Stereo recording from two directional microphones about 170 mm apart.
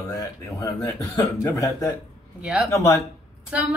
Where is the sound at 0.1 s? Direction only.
20° left (ahead or behind).